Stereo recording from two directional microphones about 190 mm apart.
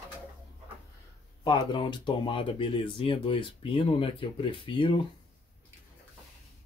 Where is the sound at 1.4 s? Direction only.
25° left (ahead or behind).